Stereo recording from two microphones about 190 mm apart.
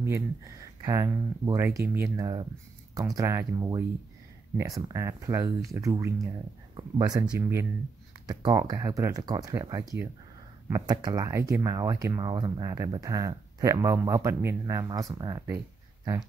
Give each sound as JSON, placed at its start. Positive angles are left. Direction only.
{"t": 0.0, "sound": "speech", "side_deg": -15}